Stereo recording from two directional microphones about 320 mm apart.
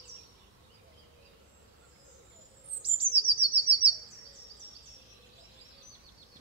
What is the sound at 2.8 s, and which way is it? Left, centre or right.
Chirp, centre.